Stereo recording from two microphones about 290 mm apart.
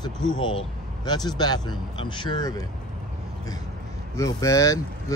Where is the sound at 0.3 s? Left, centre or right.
Centre.